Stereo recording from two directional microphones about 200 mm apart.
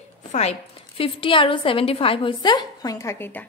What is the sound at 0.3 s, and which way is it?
A woman's voice, 35° left (ahead or behind).